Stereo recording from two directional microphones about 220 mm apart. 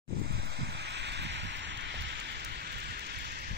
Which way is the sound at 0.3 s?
50° right (ahead or behind).